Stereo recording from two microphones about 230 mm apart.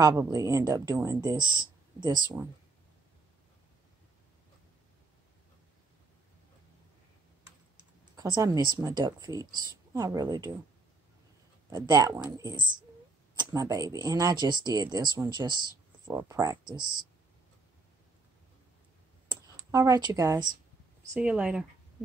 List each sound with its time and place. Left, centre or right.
0.0 s speech: centre
8.2 s speech: centre
11.7 s speech: centre
19.2 s a sound: centre
21.2 s speech: centre